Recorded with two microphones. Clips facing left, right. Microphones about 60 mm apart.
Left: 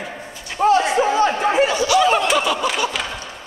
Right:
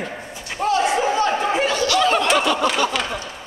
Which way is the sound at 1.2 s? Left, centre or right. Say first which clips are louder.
Left 3 dB; centre.